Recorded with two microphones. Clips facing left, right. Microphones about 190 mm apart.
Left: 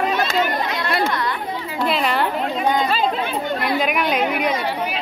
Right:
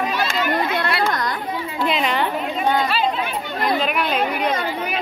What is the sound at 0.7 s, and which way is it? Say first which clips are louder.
Chatter: even; 50° right (ahead or behind).